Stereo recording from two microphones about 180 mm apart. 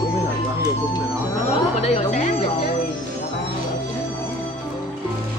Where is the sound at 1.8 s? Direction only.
35° left (ahead or behind).